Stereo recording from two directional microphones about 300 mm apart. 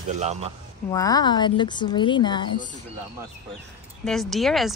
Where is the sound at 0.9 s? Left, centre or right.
Centre.